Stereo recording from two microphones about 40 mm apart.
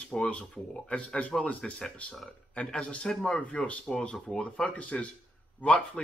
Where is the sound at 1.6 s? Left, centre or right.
Centre.